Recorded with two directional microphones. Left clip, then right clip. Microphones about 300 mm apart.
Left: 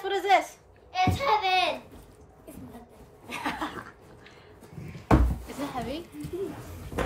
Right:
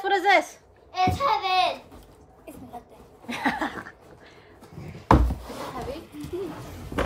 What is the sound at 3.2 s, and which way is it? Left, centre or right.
Speech, right.